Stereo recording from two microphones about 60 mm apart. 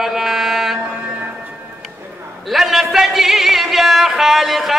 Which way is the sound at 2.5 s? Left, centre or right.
Centre.